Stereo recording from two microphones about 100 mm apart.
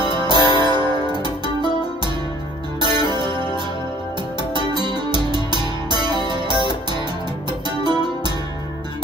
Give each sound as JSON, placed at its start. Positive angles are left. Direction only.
{"t": 0.0, "sound": "music", "side_deg": -45}
{"t": 2.8, "sound": "music", "side_deg": -45}